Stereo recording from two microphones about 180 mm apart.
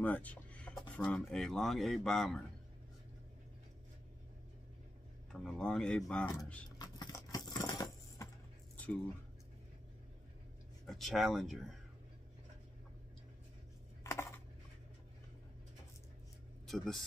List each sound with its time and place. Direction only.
0.0 s music: 10° left (ahead or behind)
0.9 s speech: 5° left (ahead or behind)
5.3 s speech: 5° left (ahead or behind)
6.8 s a sound: 20° left (ahead or behind)
10.9 s speech: centre (ahead or behind)
14.0 s a sound: 15° left (ahead or behind)
16.6 s speech: centre (ahead or behind)